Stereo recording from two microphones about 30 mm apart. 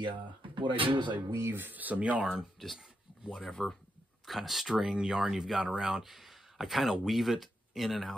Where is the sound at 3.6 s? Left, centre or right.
Left.